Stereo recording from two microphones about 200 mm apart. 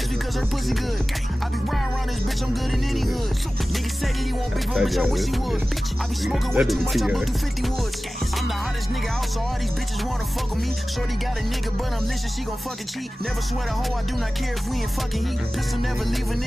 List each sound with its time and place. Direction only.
2.7 s music: centre (ahead or behind)
4.7 s music: centre (ahead or behind)